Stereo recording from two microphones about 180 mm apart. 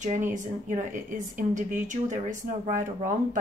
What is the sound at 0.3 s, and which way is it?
Speech, 45° right (ahead or behind).